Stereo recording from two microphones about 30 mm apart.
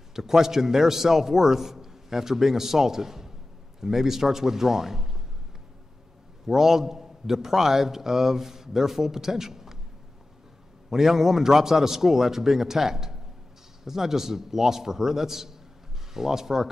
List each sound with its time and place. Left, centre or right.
0.1 s a man's voice: centre
6.4 s a man's voice: centre
10.9 s a man's voice: centre